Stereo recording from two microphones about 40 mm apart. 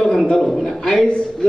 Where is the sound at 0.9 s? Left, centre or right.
Left.